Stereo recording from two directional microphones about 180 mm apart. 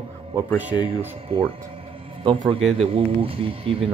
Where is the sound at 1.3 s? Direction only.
30° right (ahead or behind).